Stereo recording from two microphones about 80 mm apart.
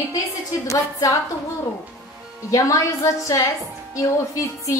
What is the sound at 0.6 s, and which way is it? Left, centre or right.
Speech, left.